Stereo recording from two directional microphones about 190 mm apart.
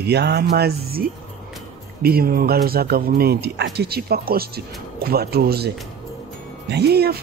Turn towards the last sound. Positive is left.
turn(degrees=-55)  # may be behind; listen again after turning